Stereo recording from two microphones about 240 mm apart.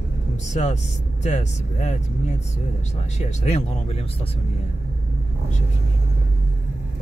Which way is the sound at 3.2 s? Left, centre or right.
Left.